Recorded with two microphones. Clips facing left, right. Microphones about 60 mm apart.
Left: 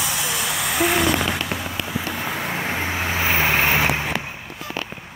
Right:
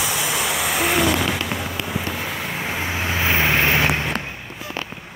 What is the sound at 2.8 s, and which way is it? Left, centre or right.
Vehicle, centre.